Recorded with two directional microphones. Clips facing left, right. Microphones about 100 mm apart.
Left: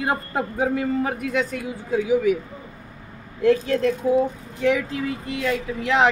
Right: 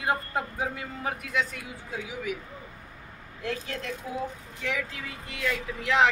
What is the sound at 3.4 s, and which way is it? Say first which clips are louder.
A woman's voice: left 15 dB; 40° left (ahead or behind).